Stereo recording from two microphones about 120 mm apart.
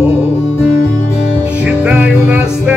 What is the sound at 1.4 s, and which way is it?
Music, 10° right (ahead or behind).